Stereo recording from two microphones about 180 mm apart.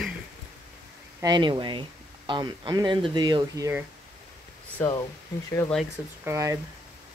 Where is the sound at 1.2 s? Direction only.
25° right (ahead or behind).